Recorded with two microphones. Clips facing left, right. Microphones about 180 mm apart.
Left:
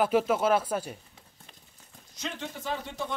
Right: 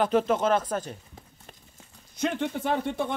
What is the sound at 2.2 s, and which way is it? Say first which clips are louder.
Speech: right 10 dB; 55° right (ahead or behind).